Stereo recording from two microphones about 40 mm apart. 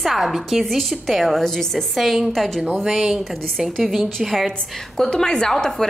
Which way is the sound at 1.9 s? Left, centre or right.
Centre.